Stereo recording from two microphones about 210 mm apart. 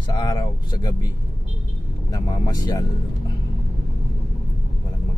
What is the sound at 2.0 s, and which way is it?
Speech, 20° left (ahead or behind).